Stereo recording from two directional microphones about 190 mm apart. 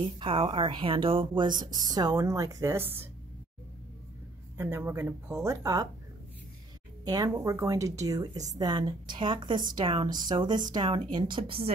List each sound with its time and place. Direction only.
0.0 s a woman's voice: 30° right (ahead or behind); by 3.1 s 10° right (ahead or behind)
4.6 s speech: 15° right (ahead or behind)
7.1 s a woman's voice: 20° right (ahead or behind)